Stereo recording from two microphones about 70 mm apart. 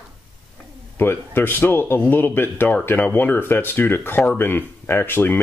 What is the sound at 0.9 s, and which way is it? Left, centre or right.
Speech, left.